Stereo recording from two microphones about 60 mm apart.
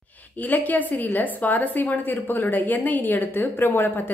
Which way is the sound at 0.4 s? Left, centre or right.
Left.